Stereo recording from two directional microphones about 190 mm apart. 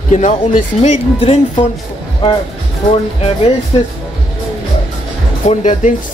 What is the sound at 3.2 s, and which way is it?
Speech, 30° left (ahead or behind).